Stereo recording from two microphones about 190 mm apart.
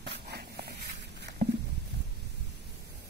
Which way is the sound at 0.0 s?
60° right (ahead or behind).